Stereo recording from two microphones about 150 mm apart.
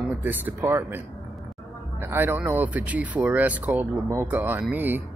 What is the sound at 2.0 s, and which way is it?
Speech, 15° right (ahead or behind).